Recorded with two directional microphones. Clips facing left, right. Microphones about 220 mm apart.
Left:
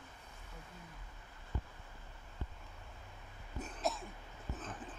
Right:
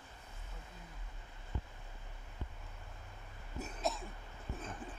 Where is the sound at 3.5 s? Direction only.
10° right (ahead or behind).